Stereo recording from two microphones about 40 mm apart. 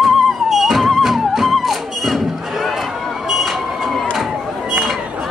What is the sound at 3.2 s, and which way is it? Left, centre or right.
Vehicle, centre.